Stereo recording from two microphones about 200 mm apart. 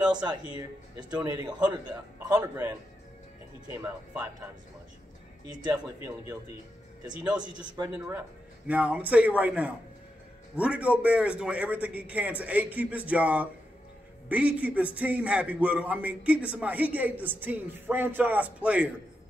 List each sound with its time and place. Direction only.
0.1 s a man's voice: 20° right (ahead or behind)
3.7 s a man's voice: 15° right (ahead or behind)
5.5 s a man's voice: 20° right (ahead or behind)
7.5 s a man's voice: 20° right (ahead or behind); by 18.9 s 5° right (ahead or behind)